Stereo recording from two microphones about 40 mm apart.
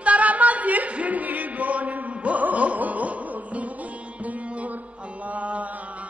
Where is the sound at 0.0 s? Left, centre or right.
Right.